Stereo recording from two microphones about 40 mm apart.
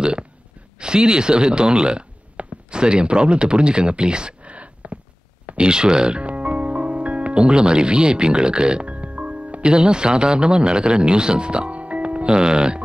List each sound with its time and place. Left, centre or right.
0.0 s burping: right
0.7 s speech: right
2.3 s a sound: right
5.6 s music: right
9.6 s speech: right
12.4 s speech: right